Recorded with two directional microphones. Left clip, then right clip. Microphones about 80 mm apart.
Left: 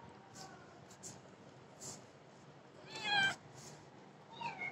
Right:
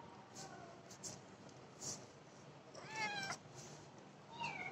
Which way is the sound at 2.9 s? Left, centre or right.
Left.